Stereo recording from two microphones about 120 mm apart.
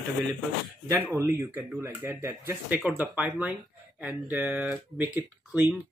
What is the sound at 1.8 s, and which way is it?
Speech, 20° right (ahead or behind).